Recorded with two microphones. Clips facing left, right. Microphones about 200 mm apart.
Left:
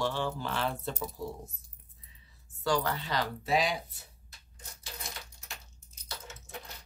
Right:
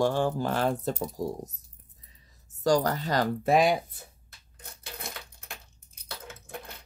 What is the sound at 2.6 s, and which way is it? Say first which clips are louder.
Speech: right 6 dB; 40° right (ahead or behind).